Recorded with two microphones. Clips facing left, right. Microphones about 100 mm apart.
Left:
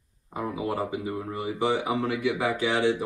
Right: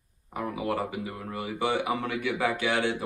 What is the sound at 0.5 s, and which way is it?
Speech, 25° left (ahead or behind).